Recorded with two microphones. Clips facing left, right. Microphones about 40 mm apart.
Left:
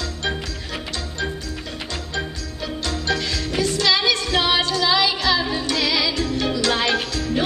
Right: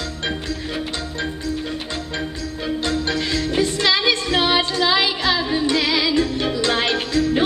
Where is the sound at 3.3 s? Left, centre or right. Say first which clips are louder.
Right 3 dB; right.